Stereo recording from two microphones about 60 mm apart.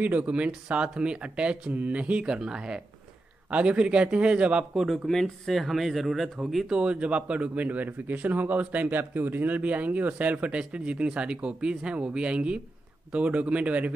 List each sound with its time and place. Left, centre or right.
0.0 s a man's voice: right
4.7 s speech: centre
6.8 s a man's voice: centre